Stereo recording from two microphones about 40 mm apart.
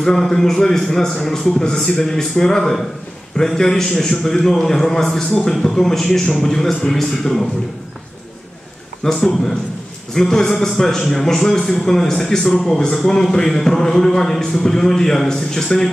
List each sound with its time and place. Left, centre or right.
0.0 s a man's voice: centre
9.0 s a man's voice: centre